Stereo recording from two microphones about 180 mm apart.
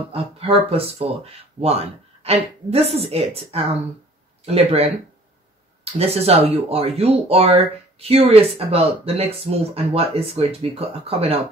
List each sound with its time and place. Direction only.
0.1 s speech: 30° right (ahead or behind)
5.9 s speech: 35° right (ahead or behind)